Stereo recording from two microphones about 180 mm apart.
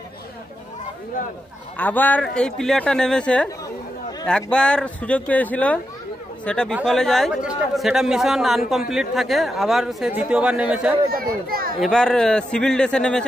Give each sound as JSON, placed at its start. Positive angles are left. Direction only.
{"t": 1.8, "sound": "a man's voice", "side_deg": 10}
{"t": 11.4, "sound": "a child's voice", "side_deg": -55}
{"t": 11.8, "sound": "a man's voice", "side_deg": 5}